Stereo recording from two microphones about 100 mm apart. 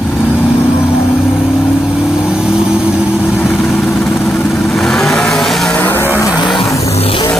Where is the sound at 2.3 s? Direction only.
5° right (ahead or behind).